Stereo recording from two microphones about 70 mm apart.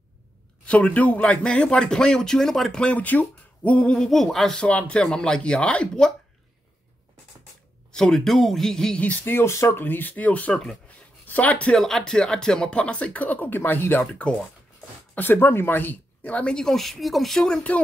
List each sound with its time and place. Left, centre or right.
0.7 s speech: centre
4.6 s speech: centre
7.9 s speech: centre
9.2 s speech: left
10.5 s speech: centre
11.2 s speech: left
11.7 s speech: centre; by 14.0 s left
15.1 s speech: left; by 17.6 s centre